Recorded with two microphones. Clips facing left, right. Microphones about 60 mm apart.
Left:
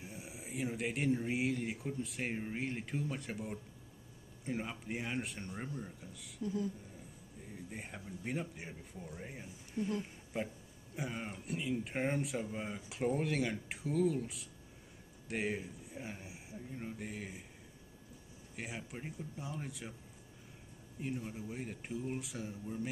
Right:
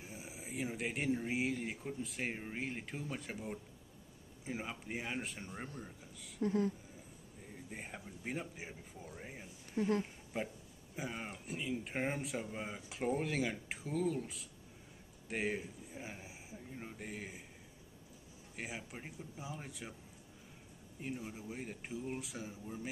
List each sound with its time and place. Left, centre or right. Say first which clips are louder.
0.0 s speech: left 1 dB; centre
6.4 s speech: right 4 dB; right
7.5 s speech: left 1 dB; centre
9.8 s speech: right 3 dB; right
10.3 s speech: left 1 dB; centre
18.6 s speech: left 1 dB; centre
21.0 s speech: left 3 dB; centre